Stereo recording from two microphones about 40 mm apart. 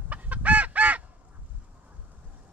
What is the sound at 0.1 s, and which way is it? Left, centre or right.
Fowl, right.